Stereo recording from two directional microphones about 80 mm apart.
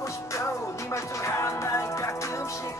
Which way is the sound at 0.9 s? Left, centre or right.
Left.